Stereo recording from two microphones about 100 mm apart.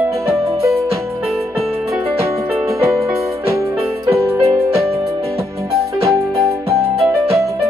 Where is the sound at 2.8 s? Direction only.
30° right (ahead or behind).